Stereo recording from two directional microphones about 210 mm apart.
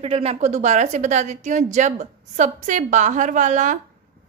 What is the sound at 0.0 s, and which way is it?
A woman's voice, 30° right (ahead or behind).